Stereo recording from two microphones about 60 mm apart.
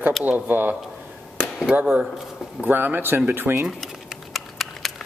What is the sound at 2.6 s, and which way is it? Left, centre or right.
A man's voice, right.